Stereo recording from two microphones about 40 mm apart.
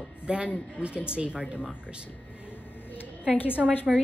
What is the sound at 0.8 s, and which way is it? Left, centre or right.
Speech, left.